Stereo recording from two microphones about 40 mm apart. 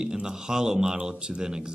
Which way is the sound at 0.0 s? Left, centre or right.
Centre.